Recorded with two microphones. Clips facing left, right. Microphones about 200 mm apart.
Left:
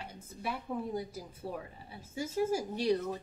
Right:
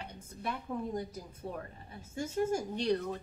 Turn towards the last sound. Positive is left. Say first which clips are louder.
# left 1 dB
turn(degrees=5)  # may be behind; listen again after turning